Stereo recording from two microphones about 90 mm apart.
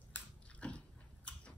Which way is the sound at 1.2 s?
10° left (ahead or behind).